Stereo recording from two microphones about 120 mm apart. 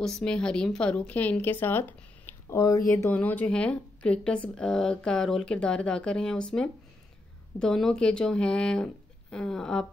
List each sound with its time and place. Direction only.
0.0 s a woman's voice: 5° left (ahead or behind); by 3.1 s 30° left (ahead or behind)
3.1 s a woman's voice: 15° left (ahead or behind)